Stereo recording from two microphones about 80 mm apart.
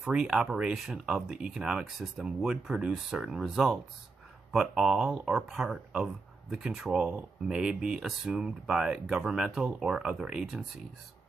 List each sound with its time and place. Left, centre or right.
0.0 s speech: centre